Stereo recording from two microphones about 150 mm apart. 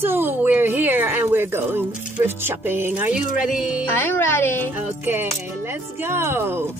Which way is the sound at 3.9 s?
15° left (ahead or behind).